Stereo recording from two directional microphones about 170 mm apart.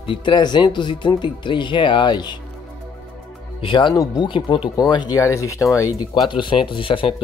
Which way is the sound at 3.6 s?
25° left (ahead or behind).